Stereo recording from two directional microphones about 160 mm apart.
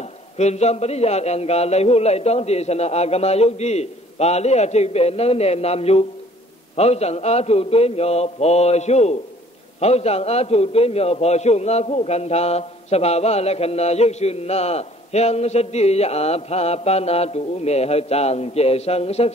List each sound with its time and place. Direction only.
0.4 s a man's voice: 45° left (ahead or behind)